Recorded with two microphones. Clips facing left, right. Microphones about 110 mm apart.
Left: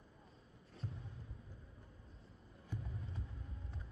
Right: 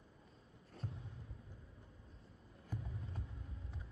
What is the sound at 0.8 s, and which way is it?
Music, 45° right (ahead or behind).